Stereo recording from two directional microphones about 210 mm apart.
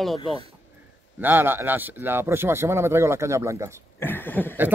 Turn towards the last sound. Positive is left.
turn(degrees=10)  # may be behind; listen again after turning